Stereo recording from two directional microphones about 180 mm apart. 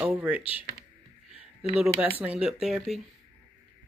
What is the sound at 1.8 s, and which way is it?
Speech, 10° right (ahead or behind).